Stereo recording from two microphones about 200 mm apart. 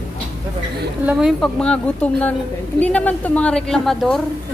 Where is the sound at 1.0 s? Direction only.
5° right (ahead or behind).